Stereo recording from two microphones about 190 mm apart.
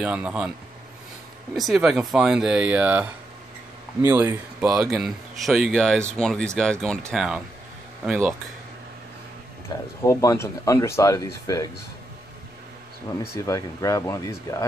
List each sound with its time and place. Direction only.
0.0 s speech: 5° right (ahead or behind)
1.5 s speech: centre (ahead or behind)
9.7 s speech: 20° left (ahead or behind)
13.2 s speech: 15° left (ahead or behind)